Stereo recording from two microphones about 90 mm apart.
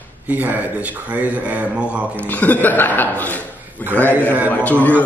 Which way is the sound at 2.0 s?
20° left (ahead or behind).